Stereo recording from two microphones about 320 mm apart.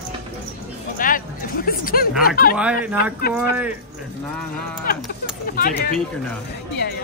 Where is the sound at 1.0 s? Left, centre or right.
Left.